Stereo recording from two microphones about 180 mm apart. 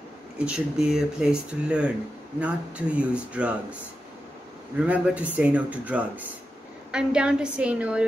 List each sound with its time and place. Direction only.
0.5 s speech: 5° right (ahead or behind)
4.8 s speech: 10° right (ahead or behind)